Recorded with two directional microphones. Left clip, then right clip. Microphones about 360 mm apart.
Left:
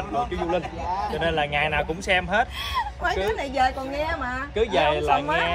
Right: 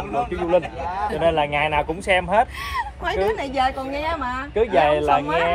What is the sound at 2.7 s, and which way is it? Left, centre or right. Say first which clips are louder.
Speech: right 2 dB; centre.